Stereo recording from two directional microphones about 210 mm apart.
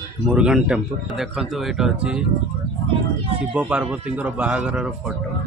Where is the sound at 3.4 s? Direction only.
5° right (ahead or behind).